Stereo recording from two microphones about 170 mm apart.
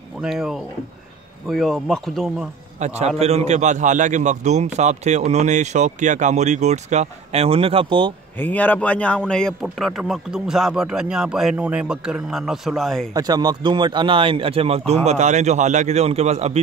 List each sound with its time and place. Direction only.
0.2 s speech: centre (ahead or behind)
2.8 s a man's voice: 40° right (ahead or behind)
8.4 s speech: 10° left (ahead or behind)
13.1 s a man's voice: 25° right (ahead or behind); by 16.5 s 40° right (ahead or behind)